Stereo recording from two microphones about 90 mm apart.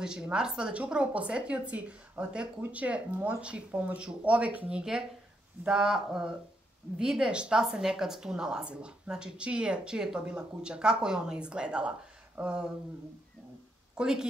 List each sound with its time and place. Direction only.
0.0 s a woman's voice: 5° right (ahead or behind)
13.9 s a woman's voice: 5° right (ahead or behind)